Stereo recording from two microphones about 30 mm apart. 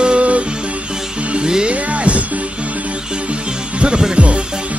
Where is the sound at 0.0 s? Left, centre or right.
Right.